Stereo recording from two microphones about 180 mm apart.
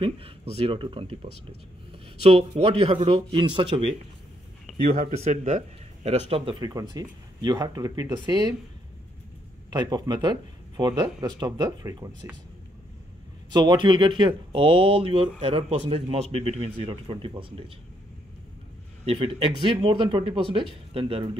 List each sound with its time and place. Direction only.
0.0 s speech: 30° right (ahead or behind)
4.8 s speech: 55° right (ahead or behind)
5.2 s speech: 40° right (ahead or behind)
6.6 s speech: 20° right (ahead or behind)
9.7 s speech: 25° right (ahead or behind)
13.5 s speech: 25° right (ahead or behind)
19.0 s speech: 30° right (ahead or behind)